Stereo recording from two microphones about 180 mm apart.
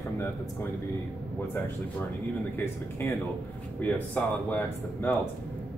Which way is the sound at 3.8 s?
10° left (ahead or behind).